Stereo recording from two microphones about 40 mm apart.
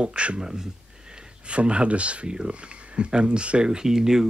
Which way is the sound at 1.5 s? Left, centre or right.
Right.